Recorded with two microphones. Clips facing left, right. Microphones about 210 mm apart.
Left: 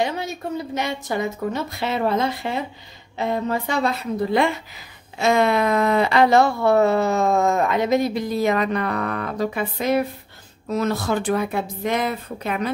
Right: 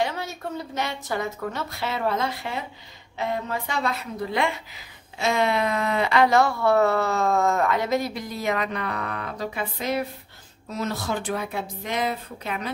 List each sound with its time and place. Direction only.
0.0 s a woman's voice: 15° left (ahead or behind); by 4.5 s 35° left (ahead or behind)
5.2 s a woman's voice: 50° left (ahead or behind)